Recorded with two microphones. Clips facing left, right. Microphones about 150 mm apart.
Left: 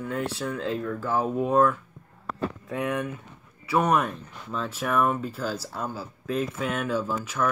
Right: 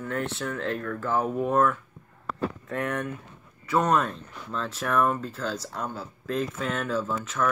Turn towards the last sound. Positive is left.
turn(degrees=5)  # may be behind; listen again after turning